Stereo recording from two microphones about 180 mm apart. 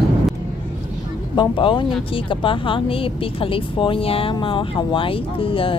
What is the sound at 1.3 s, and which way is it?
Speech, 25° left (ahead or behind).